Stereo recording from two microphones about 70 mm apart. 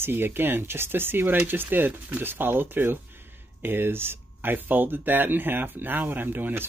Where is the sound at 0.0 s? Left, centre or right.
Right.